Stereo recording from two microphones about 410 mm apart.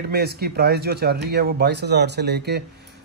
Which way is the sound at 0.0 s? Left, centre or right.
Right.